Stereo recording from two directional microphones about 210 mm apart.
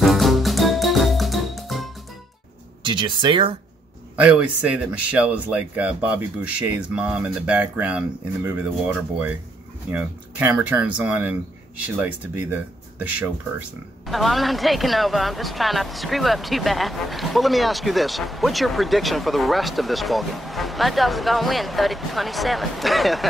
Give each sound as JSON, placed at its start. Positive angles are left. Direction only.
{"t": 0.0, "sound": "music", "side_deg": 0}
{"t": 2.8, "sound": "speech", "side_deg": -25}
{"t": 4.2, "sound": "speech", "side_deg": -5}